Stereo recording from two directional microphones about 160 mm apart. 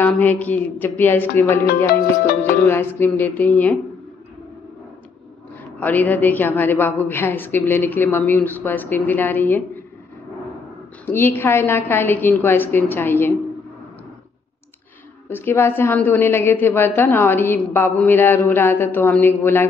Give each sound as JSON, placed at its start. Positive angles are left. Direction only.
{"t": 0.0, "sound": "a woman's voice", "side_deg": 10}
{"t": 1.9, "sound": "music", "side_deg": 75}
{"t": 2.5, "sound": "a woman's voice", "side_deg": 15}
{"t": 5.8, "sound": "a woman's voice", "side_deg": 10}
{"t": 11.1, "sound": "a woman's voice", "side_deg": 15}
{"t": 15.2, "sound": "a woman's voice", "side_deg": 15}